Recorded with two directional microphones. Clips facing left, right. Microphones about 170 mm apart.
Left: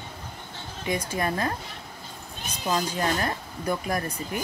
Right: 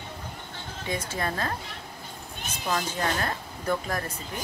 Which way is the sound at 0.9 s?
15° left (ahead or behind).